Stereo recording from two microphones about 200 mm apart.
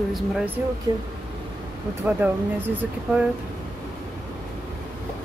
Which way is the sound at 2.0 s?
10° right (ahead or behind).